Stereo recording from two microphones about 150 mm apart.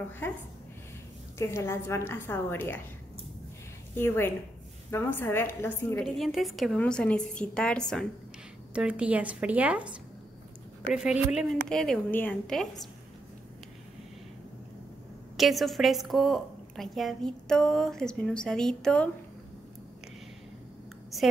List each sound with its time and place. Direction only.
0.2 s a woman's voice: 15° left (ahead or behind)
1.4 s a woman's voice: 20° left (ahead or behind)
3.9 s a woman's voice: 15° left (ahead or behind)
5.9 s a woman's voice: centre (ahead or behind)
8.7 s a woman's voice: 10° right (ahead or behind)
10.9 s a woman's voice: 5° right (ahead or behind)
15.3 s a woman's voice: centre (ahead or behind)